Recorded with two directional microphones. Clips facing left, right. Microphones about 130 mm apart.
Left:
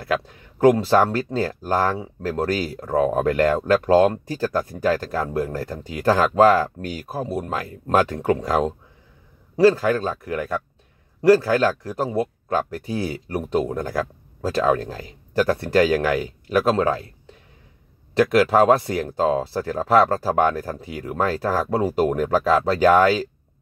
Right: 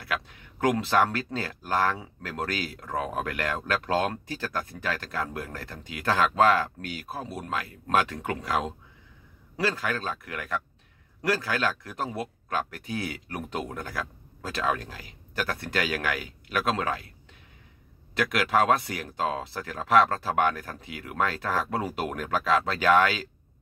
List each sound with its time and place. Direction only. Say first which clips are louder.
0.0 s speech: left 9 dB; 35° left (ahead or behind)
18.2 s speech: left 8 dB; 35° left (ahead or behind)